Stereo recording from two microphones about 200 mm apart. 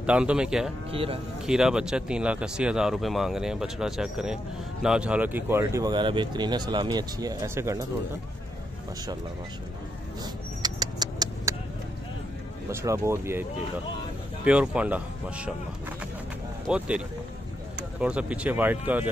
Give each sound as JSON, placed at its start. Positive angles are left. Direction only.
{"t": 0.0, "sound": "speech", "side_deg": -5}
{"t": 0.9, "sound": "speech", "side_deg": -30}
{"t": 1.4, "sound": "speech", "side_deg": -5}
{"t": 10.2, "sound": "vehicle", "side_deg": -20}
{"t": 12.7, "sound": "speech", "side_deg": -15}
{"t": 16.6, "sound": "speech", "side_deg": -5}
{"t": 18.0, "sound": "speech", "side_deg": -5}